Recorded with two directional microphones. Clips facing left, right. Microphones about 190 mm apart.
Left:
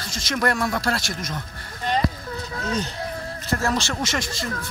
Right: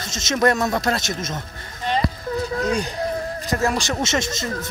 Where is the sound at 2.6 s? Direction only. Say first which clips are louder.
Right 4 dB; 15° right (ahead or behind).